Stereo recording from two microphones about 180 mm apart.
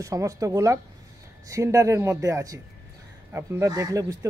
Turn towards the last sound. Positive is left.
turn(degrees=-20)  # may be behind; listen again after turning